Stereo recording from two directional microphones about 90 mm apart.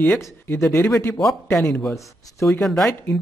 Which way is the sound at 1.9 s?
35° left (ahead or behind).